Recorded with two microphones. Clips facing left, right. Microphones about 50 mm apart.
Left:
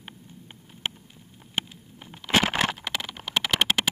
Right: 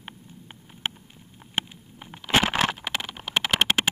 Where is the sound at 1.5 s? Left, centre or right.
Right.